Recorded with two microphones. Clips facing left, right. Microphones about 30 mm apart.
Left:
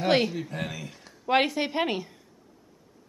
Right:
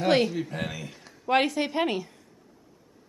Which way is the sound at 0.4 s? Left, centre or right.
Centre.